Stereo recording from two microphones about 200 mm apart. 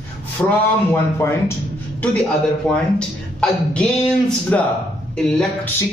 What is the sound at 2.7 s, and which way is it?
Speech, 5° left (ahead or behind).